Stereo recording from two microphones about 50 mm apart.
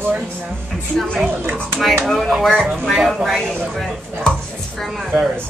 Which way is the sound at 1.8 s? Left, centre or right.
Centre.